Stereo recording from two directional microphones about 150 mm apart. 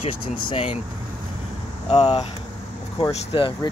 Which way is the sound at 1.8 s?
40° left (ahead or behind).